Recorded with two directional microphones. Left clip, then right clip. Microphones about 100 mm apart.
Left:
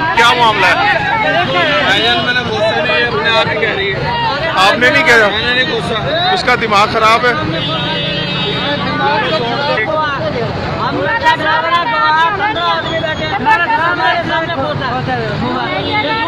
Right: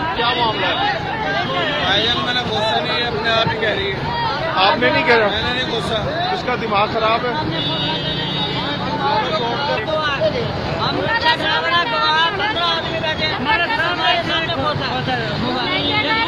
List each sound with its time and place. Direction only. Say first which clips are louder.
1.9 s vehicle: left 5 dB; 30° right (ahead or behind)
4.6 s speech: left 6 dB; 35° right (ahead or behind)
6.5 s speech: left 6 dB; 25° right (ahead or behind)
11.7 s vehicle: left 4 dB; 50° right (ahead or behind)